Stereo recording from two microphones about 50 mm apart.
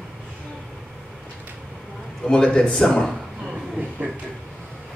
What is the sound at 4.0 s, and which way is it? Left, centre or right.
Speech, right.